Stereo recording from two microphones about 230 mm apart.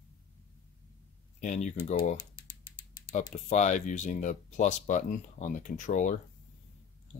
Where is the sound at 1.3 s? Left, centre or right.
Left.